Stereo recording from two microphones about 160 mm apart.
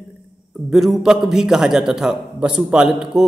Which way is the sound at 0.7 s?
Centre (ahead or behind).